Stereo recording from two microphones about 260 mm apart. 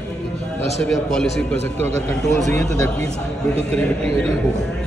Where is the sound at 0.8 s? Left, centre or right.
Centre.